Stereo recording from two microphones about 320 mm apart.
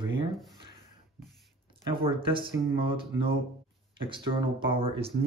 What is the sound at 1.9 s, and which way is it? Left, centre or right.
Speech, centre.